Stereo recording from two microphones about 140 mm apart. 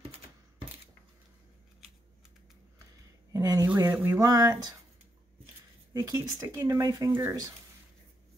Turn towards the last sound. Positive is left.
turn(degrees=-20)  # may be behind; listen again after turning